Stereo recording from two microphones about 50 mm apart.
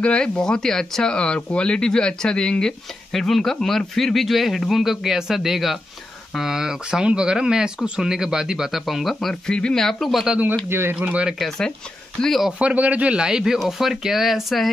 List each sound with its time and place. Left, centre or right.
0.0 s speech: centre
3.1 s speech: centre
9.1 s speech: centre
9.8 s speech: centre
10.7 s speech: right
11.0 s a man's voice: right
12.2 s speech: centre
12.5 s a man's voice: right
13.1 s speech: centre